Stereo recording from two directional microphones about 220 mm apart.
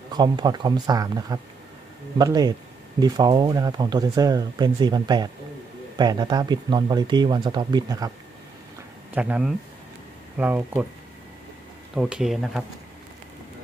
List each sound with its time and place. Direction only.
0.1 s speech: 20° right (ahead or behind)
9.1 s speech: 5° right (ahead or behind)
11.9 s speech: 5° right (ahead or behind)